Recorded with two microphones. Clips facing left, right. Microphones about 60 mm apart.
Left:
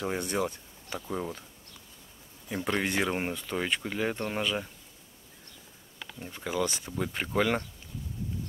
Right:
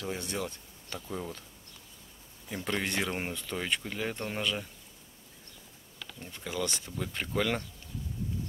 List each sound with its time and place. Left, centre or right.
0.0 s speech: left
2.5 s speech: centre
6.1 s speech: centre